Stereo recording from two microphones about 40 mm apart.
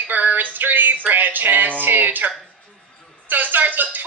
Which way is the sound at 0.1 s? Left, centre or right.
Right.